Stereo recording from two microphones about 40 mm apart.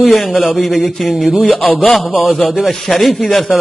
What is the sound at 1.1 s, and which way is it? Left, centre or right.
Speech, centre.